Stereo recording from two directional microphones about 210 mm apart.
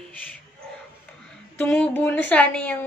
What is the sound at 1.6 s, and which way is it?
A woman's voice, 5° left (ahead or behind).